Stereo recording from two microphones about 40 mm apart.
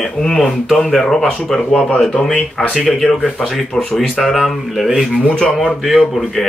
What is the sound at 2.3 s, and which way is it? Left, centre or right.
Speech, left.